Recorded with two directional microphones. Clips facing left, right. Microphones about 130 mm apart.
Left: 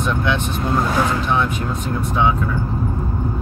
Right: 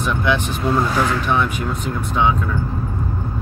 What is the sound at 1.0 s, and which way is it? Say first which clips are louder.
Speech: even; 20° left (ahead or behind).